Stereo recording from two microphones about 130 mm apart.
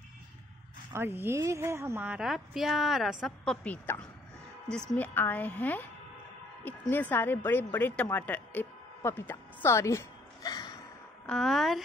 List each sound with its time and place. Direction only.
0.9 s speech: 20° right (ahead or behind)
2.0 s a woman's voice: 5° right (ahead or behind); by 10.8 s 30° left (ahead or behind)
11.2 s a woman's voice: centre (ahead or behind)